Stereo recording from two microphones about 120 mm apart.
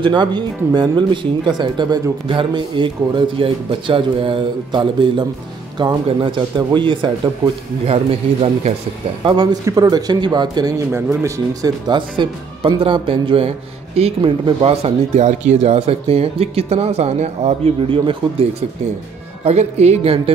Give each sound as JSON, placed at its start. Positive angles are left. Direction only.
{"t": 0.0, "sound": "speech", "side_deg": -40}
{"t": 7.8, "sound": "speech", "side_deg": -55}
{"t": 9.2, "sound": "speech", "side_deg": -40}
{"t": 9.7, "sound": "speech", "side_deg": -30}
{"t": 10.9, "sound": "speech", "side_deg": -25}
{"t": 11.9, "sound": "speech", "side_deg": -45}
{"t": 13.9, "sound": "speech", "side_deg": -60}
{"t": 15.1, "sound": "speech", "side_deg": -80}
{"t": 19.4, "sound": "speech", "side_deg": -65}